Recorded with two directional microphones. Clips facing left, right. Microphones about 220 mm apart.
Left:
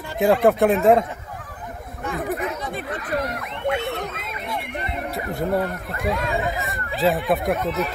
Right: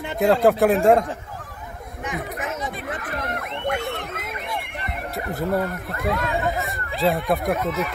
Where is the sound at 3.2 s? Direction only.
50° right (ahead or behind).